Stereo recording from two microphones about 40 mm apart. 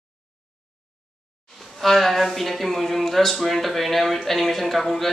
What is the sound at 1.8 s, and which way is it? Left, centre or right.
A woman's voice, centre.